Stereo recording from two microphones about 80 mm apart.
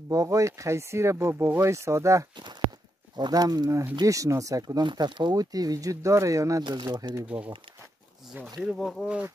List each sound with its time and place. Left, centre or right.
0.1 s speech: right
3.2 s speech: right
4.8 s speech: right
6.6 s speech: right
7.2 s speech: centre
8.5 s speech: centre